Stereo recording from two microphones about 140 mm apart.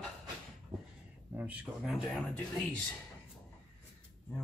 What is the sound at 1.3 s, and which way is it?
Speech, 10° right (ahead or behind).